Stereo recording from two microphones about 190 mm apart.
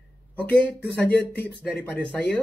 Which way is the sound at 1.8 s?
5° left (ahead or behind).